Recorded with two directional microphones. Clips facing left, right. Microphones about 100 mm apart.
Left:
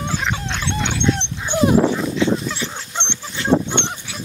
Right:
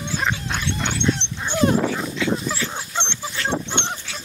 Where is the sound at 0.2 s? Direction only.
5° right (ahead or behind).